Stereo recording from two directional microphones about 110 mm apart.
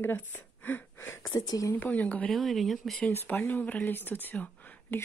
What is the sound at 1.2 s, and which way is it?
Speech, 40° left (ahead or behind).